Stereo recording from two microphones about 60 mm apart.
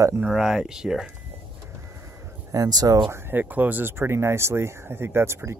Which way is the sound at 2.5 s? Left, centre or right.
Right.